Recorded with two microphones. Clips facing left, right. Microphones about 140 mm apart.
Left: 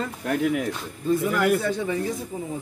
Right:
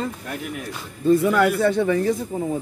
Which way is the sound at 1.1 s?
60° right (ahead or behind).